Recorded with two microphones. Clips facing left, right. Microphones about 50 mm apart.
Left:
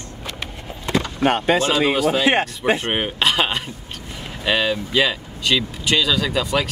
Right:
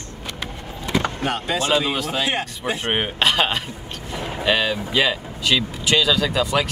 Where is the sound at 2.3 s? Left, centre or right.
Left.